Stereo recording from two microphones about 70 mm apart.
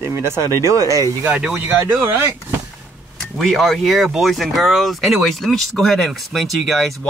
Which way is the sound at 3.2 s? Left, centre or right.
Centre.